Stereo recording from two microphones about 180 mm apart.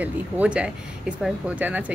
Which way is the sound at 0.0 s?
5° right (ahead or behind).